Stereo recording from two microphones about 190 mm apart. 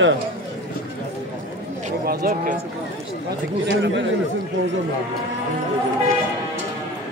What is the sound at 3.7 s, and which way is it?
Speech, 65° right (ahead or behind).